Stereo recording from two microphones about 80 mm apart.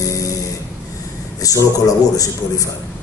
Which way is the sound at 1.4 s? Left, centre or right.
Left.